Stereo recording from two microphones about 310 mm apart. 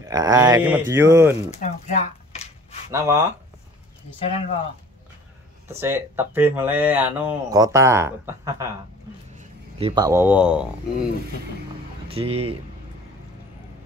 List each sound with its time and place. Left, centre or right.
0.0 s speech: centre
1.5 s speech: left
2.9 s speech: centre
5.7 s speech: centre
12.1 s speech: centre